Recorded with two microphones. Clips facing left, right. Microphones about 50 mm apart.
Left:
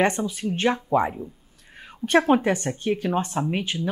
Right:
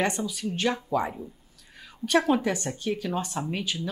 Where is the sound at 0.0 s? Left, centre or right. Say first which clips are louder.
Left 5 dB; left.